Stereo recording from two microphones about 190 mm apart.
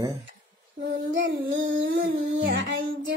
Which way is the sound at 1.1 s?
75° right (ahead or behind).